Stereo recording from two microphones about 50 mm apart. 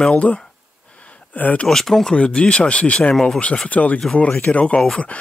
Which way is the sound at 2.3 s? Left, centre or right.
Centre.